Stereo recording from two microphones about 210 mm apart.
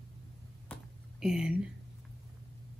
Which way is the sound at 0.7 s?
5° left (ahead or behind).